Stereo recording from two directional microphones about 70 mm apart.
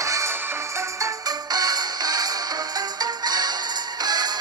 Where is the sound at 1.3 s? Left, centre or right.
Right.